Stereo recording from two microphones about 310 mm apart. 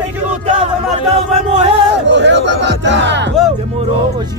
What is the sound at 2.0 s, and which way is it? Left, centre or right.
Speech, right.